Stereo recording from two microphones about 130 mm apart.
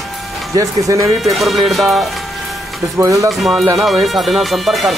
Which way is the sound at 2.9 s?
25° right (ahead or behind).